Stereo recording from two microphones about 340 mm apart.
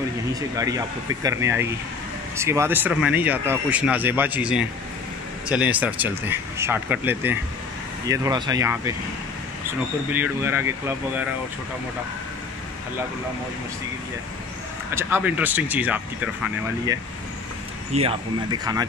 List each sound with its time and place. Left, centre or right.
0.3 s speech: centre
10.1 s speech: centre
15.0 s speech: centre
17.9 s speech: centre